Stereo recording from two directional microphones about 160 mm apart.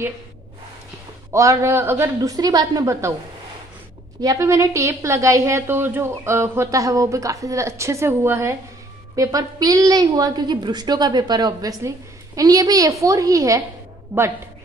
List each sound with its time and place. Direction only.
1.3 s a woman's voice: 20° right (ahead or behind)
4.2 s a woman's voice: 20° right (ahead or behind)